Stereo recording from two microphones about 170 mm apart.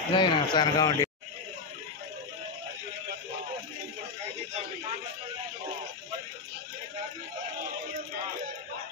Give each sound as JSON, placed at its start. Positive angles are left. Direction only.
{"t": 0.1, "sound": "speech", "side_deg": 25}